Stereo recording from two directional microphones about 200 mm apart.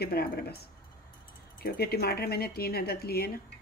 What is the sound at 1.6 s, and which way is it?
Speech, 50° left (ahead or behind).